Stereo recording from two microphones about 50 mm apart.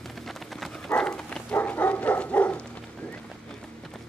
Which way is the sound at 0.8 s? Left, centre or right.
Centre.